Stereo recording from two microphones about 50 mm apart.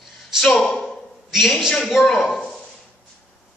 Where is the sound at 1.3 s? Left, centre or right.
Centre.